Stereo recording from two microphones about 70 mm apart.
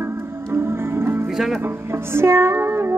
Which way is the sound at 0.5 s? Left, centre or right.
Right.